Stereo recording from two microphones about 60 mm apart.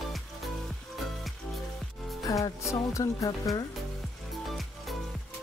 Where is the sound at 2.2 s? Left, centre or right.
Left.